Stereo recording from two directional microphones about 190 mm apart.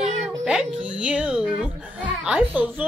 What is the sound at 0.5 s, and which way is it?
Music, 5° right (ahead or behind).